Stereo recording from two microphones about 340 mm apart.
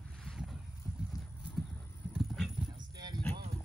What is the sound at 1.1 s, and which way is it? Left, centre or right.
Clip-clop, centre.